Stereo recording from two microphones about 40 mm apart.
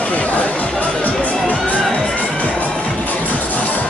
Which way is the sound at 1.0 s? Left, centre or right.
Left.